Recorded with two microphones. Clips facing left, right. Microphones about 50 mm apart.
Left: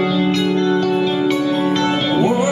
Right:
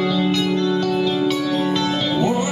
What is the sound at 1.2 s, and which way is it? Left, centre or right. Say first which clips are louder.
Music: left 3 dB; centre.